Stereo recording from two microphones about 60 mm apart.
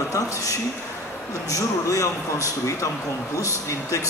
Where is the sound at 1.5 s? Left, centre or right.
Left.